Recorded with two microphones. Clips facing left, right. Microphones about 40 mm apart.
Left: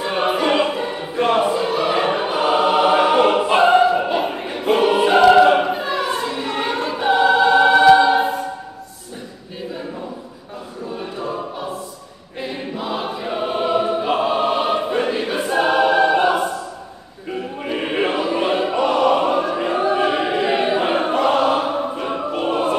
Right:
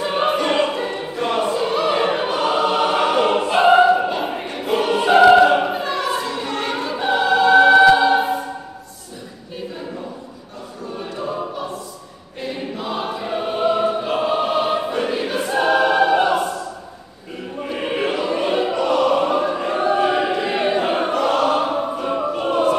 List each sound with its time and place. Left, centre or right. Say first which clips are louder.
0.2 s music: left 1 dB; centre
1.1 s choir: left 5 dB; left
1.5 s choir: even; centre
3.6 s choir: right 4 dB; centre
11.0 s choir: right 1 dB; centre
17.6 s chant: even; centre
17.9 s choir: left 2 dB; centre
18.7 s opera: left 2 dB; left
19.2 s choir: even; centre
21.1 s choir: left 2 dB; centre
21.5 s choir: even; centre